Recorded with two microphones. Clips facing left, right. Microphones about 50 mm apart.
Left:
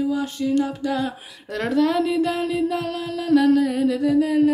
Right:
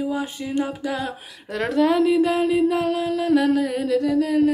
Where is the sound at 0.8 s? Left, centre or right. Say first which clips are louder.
Left 2 dB; centre.